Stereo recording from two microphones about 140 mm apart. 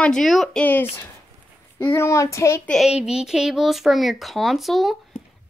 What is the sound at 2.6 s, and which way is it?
Speech, 5° left (ahead or behind).